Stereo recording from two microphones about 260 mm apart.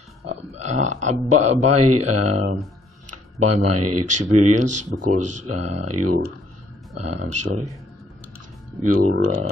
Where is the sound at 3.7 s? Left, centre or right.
Right.